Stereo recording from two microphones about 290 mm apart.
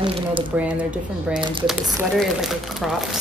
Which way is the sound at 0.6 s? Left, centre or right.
Centre.